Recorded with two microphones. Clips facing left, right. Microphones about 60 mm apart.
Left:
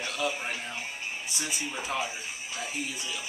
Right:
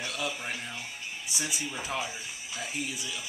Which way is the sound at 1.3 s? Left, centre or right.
Centre.